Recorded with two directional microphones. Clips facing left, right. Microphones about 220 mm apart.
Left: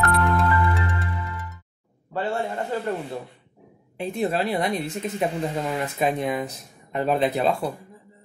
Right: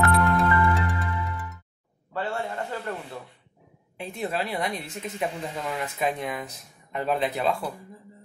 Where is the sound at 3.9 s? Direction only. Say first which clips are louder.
Left 5 dB; 30° left (ahead or behind).